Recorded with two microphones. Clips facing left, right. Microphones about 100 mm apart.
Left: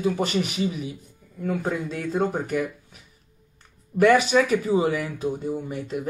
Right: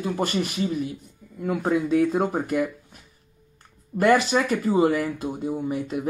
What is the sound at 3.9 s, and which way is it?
Speech, centre (ahead or behind).